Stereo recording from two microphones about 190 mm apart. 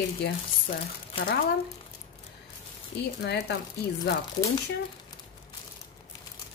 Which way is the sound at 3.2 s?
60° left (ahead or behind).